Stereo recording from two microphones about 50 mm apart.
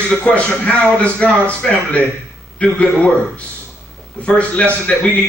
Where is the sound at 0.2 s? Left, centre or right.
Left.